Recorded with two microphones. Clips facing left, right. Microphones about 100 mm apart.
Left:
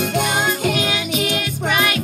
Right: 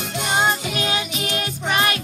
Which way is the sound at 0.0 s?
55° left (ahead or behind).